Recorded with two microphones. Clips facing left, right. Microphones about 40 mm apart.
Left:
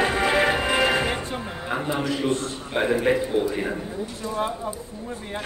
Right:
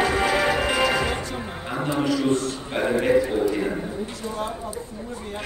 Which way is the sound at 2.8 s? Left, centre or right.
Left.